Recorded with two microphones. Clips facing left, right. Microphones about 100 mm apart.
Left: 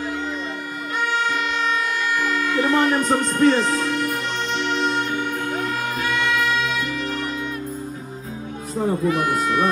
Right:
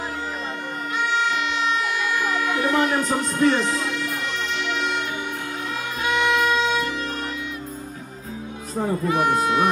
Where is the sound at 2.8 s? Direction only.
50° left (ahead or behind).